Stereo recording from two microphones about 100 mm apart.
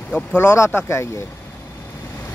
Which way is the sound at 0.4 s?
25° left (ahead or behind).